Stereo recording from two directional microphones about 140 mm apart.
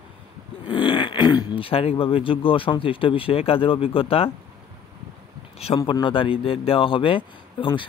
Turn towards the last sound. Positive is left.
turn(degrees=35)  # may be behind; listen again after turning